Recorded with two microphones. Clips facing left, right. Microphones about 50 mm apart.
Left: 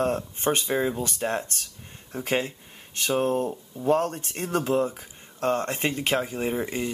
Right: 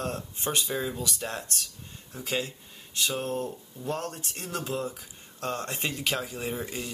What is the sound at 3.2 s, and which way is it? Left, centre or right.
Speech, left.